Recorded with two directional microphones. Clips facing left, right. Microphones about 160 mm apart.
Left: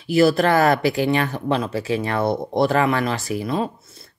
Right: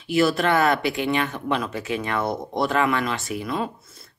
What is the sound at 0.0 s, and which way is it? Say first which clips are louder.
Speech: left 4 dB; 35° left (ahead or behind).